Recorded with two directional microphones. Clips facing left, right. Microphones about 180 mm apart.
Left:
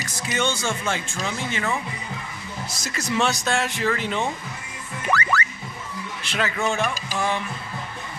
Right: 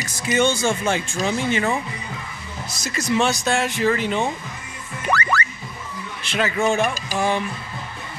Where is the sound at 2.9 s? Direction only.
10° right (ahead or behind).